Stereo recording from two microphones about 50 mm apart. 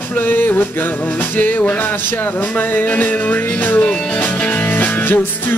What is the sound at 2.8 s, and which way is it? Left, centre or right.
Music, left.